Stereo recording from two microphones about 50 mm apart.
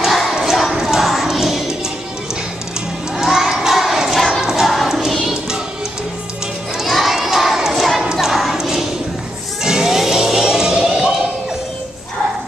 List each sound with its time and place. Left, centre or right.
0.0 s battle cry: centre
0.8 s music: centre
3.2 s a sound: centre
4.4 s music: centre
6.8 s crowd: centre
8.0 s choir: centre
8.3 s a sound: centre